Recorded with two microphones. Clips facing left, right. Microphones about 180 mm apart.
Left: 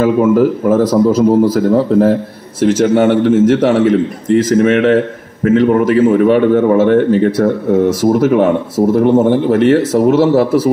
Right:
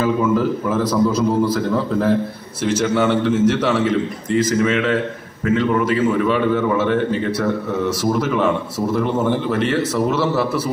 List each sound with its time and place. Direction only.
0.0 s a man's voice: 50° left (ahead or behind)
2.6 s a man's voice: 50° left (ahead or behind)